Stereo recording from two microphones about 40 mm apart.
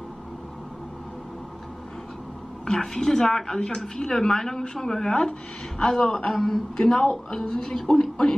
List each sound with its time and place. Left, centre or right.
2.6 s a woman's voice: centre
6.9 s a woman's voice: left